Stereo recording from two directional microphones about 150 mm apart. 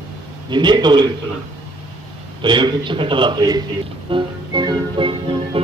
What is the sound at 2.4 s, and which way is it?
Music, 30° right (ahead or behind).